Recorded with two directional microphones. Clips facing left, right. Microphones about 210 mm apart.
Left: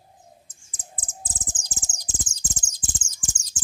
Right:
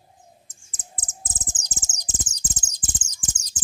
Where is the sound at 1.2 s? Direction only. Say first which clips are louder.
Even; 20° right (ahead or behind).